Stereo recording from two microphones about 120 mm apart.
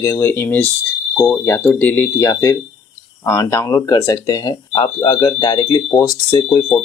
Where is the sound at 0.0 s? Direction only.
20° left (ahead or behind).